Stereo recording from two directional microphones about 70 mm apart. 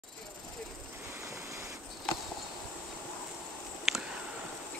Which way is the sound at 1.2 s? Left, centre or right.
Right.